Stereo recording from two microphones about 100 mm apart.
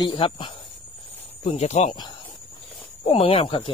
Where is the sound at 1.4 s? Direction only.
90° left.